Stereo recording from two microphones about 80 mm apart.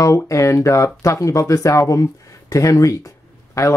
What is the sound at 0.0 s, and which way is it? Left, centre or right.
Speech, left.